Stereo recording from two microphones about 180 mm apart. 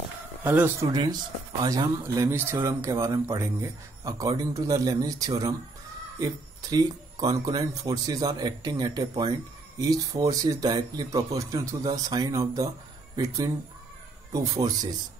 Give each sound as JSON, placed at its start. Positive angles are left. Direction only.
{"t": 0.4, "sound": "speech", "side_deg": -10}